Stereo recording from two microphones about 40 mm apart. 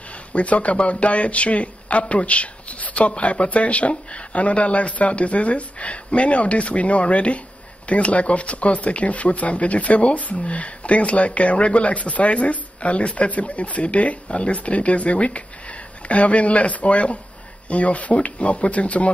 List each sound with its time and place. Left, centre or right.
0.3 s speech: left